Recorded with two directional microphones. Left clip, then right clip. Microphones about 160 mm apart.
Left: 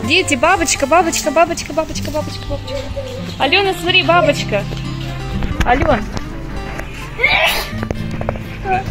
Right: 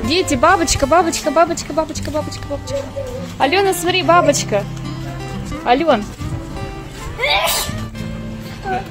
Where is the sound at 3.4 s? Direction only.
20° right (ahead or behind).